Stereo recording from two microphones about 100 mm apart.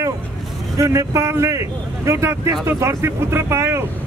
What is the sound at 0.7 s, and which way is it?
Speech, 35° right (ahead or behind).